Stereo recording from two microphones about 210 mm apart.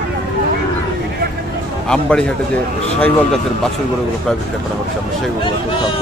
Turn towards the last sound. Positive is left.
turn(degrees=25)  # may be behind; listen again after turning